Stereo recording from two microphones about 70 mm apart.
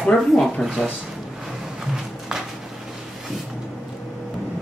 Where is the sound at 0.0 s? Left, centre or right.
Centre.